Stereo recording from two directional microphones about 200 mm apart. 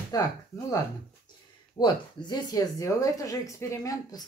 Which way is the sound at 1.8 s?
20° left (ahead or behind).